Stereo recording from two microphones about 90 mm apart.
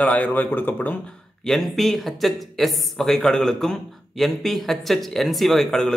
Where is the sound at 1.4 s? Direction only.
5° left (ahead or behind).